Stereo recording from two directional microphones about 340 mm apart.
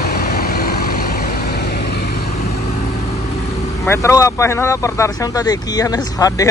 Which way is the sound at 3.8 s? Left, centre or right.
Centre.